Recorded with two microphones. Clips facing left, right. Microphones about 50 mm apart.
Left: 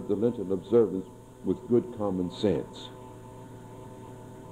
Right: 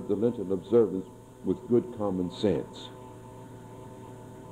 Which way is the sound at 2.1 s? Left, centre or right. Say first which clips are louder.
Even; centre.